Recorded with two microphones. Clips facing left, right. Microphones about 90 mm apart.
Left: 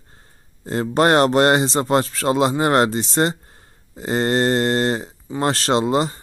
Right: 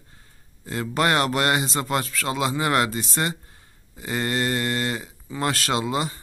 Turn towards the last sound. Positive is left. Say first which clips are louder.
# left 7 dB
turn(degrees=35)  # may be behind; listen again after turning